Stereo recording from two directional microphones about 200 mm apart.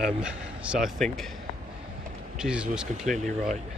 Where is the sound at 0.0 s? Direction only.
5° right (ahead or behind).